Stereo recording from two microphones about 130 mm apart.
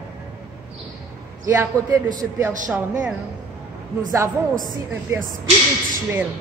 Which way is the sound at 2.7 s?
10° right (ahead or behind).